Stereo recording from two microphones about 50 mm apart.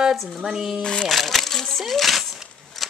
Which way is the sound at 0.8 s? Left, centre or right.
Centre.